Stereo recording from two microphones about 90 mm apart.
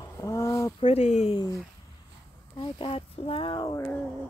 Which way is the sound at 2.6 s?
80° left.